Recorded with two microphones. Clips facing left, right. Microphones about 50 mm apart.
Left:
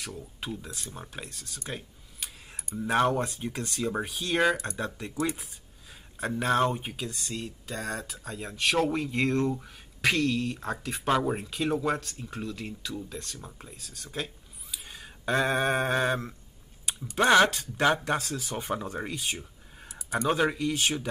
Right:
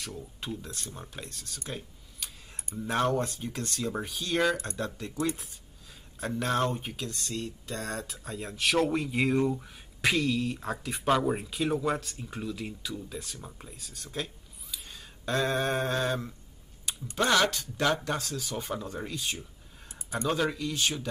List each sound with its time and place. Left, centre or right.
0.4 s speech: centre
1.7 s a sound: centre
2.9 s speech: centre
6.1 s speech: centre
14.2 s a sound: centre
16.8 s speech: left